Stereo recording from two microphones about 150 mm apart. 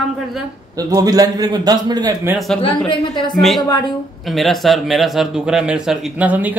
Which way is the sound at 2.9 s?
30° left (ahead or behind).